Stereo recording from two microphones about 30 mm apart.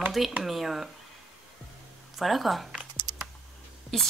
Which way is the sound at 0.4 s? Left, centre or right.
Centre.